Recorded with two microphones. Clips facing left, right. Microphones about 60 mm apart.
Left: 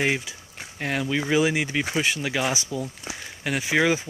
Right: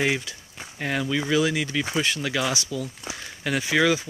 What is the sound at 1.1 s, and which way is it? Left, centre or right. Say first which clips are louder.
Speech: left 1 dB; left.